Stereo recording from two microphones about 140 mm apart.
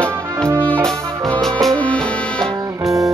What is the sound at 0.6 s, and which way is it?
Music, 10° left (ahead or behind).